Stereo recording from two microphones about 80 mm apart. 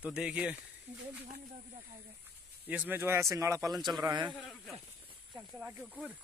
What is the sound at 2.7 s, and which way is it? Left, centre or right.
Speech, right.